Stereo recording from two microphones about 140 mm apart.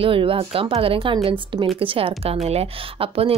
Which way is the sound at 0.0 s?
40° right (ahead or behind).